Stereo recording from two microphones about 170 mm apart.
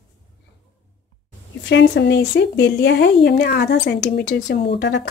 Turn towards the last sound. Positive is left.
turn(degrees=90)